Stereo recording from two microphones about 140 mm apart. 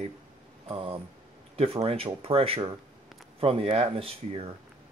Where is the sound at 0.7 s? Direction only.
45° right (ahead or behind).